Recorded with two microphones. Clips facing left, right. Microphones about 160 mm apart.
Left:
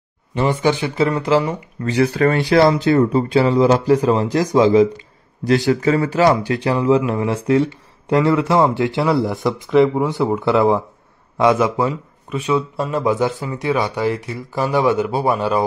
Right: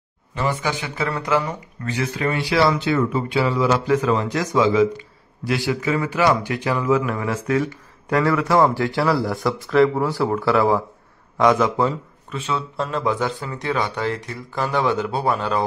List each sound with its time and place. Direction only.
0.5 s speech: 30° left (ahead or behind)
1.9 s speech: 35° left (ahead or behind)
2.2 s speech: 50° left (ahead or behind); by 9.1 s 20° left (ahead or behind)
9.5 s speech: centre (ahead or behind)
9.8 s a man's voice: 20° left (ahead or behind)